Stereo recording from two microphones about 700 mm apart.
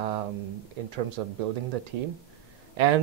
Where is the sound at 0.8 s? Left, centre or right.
Right.